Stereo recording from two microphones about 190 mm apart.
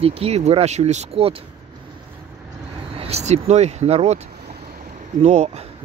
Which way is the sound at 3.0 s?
35° right (ahead or behind).